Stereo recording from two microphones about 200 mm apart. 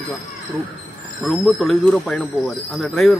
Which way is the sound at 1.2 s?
Centre (ahead or behind).